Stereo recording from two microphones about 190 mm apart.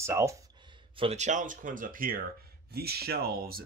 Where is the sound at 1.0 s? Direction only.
35° right (ahead or behind).